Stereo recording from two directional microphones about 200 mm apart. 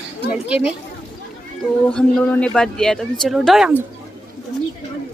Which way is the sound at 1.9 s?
5° left (ahead or behind).